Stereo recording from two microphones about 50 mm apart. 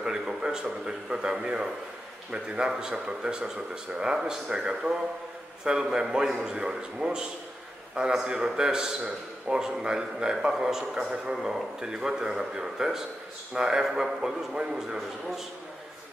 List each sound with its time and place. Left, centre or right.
0.0 s a man's voice: centre